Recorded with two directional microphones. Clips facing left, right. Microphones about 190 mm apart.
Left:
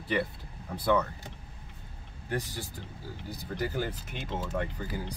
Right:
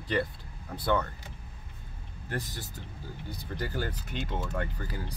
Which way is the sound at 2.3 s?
10° left (ahead or behind).